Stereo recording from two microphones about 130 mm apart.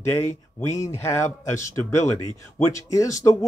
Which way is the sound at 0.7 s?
20° left (ahead or behind).